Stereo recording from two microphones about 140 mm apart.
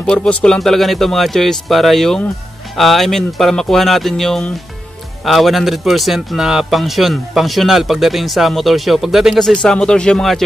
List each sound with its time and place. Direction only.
0.0 s speech: 5° left (ahead or behind)